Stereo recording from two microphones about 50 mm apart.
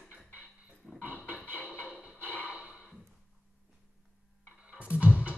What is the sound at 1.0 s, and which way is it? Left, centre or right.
Music, left.